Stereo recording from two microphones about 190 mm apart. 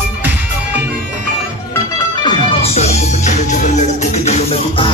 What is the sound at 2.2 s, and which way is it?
Music, 30° left (ahead or behind).